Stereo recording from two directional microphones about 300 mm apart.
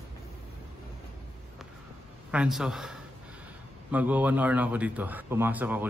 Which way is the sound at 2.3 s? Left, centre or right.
Centre.